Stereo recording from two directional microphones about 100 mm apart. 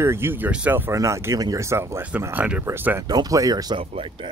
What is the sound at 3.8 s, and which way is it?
Speech, 65° right (ahead or behind).